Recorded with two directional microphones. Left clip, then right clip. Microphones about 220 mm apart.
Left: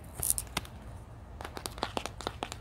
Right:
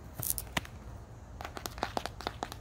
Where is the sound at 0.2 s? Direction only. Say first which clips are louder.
Left 3 dB; 15° right (ahead or behind).